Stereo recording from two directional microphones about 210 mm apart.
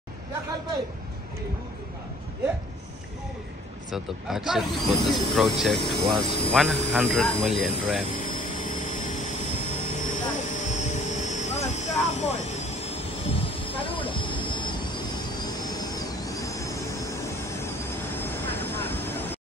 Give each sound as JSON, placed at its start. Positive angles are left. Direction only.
{"t": 3.9, "sound": "speech", "side_deg": 0}
{"t": 10.1, "sound": "aircraft", "side_deg": 35}